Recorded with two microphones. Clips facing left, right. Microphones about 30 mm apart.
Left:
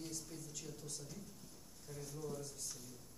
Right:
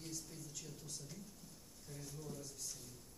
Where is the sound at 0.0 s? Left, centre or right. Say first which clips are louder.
Left 2 dB; centre.